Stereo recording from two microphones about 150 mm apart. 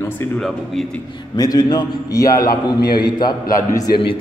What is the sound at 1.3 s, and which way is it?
A man's voice, 25° left (ahead or behind).